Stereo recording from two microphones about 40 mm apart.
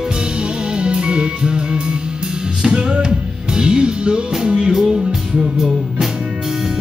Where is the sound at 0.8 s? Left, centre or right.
Right.